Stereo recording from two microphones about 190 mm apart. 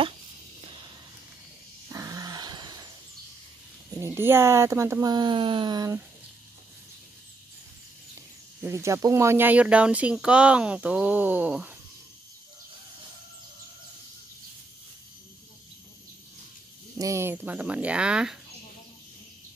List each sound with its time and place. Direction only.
0.7 s a sound: 25° right (ahead or behind)
4.0 s speech: 15° right (ahead or behind)
8.5 s speech: 15° right (ahead or behind)
17.0 s speech: 15° right (ahead or behind)